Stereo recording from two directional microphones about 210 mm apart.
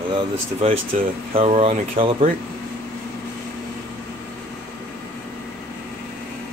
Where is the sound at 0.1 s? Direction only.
30° right (ahead or behind).